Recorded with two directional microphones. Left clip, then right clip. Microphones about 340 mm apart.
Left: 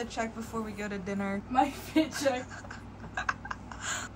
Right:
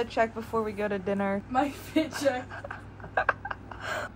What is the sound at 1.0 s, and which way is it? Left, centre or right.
Speech, centre.